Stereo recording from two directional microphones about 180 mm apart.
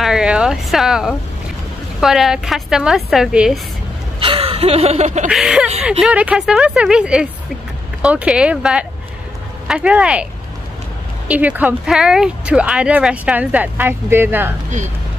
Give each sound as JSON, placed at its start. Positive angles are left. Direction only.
{"t": 0.0, "sound": "speech", "side_deg": -5}
{"t": 4.2, "sound": "a sound", "side_deg": -30}
{"t": 5.3, "sound": "speech", "side_deg": -5}
{"t": 11.2, "sound": "speech", "side_deg": -10}